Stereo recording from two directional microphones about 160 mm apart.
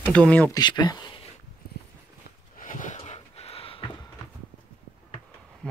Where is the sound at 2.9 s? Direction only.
40° left (ahead or behind).